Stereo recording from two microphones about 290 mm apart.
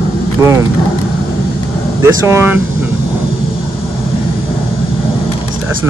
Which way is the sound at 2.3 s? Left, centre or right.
Centre.